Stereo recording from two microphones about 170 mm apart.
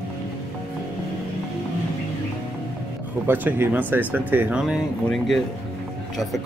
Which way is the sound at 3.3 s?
10° right (ahead or behind).